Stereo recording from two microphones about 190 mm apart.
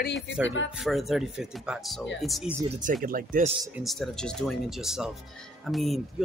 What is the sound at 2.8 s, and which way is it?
Speech, 45° right (ahead or behind).